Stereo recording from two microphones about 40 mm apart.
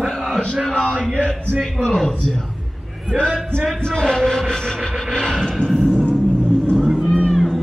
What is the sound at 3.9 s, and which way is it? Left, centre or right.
Music, centre.